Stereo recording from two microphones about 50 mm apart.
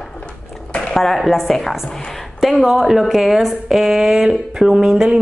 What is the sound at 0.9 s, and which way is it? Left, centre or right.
Speech, centre.